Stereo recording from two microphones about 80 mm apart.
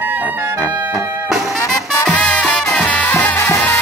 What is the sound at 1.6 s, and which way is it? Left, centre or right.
Music, left.